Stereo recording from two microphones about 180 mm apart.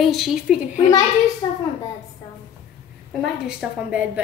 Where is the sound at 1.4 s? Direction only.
20° left (ahead or behind).